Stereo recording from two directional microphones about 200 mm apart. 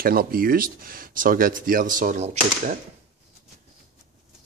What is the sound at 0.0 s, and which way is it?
Speech, 45° right (ahead or behind).